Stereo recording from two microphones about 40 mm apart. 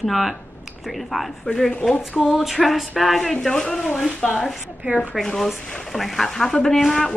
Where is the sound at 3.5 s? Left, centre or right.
Centre.